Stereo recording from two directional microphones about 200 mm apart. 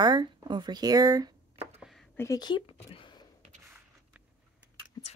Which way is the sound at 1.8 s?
Centre (ahead or behind).